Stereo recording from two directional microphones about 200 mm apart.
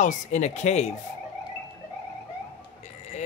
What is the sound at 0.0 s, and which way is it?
Speech, 35° left (ahead or behind).